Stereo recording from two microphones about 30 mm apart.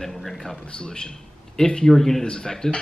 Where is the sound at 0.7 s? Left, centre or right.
Left.